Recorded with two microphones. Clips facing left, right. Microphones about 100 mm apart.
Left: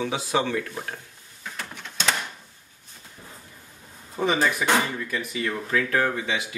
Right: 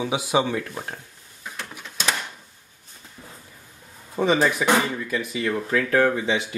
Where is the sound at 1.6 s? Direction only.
5° right (ahead or behind).